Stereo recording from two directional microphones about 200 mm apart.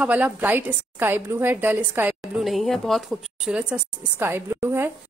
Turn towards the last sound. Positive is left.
turn(degrees=-10)  # may be behind; listen again after turning